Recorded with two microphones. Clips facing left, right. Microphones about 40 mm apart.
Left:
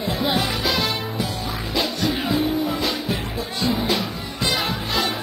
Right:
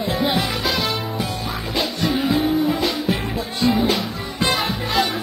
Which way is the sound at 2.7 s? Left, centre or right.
Right.